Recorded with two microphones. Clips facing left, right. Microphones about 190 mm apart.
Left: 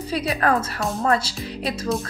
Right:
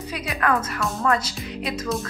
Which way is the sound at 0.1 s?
35° left (ahead or behind).